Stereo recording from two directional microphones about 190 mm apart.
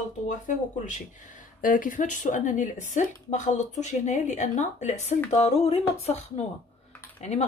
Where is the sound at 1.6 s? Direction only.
45° left (ahead or behind).